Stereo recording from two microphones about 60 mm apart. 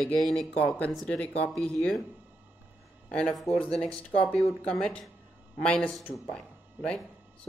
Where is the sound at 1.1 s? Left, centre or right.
Centre.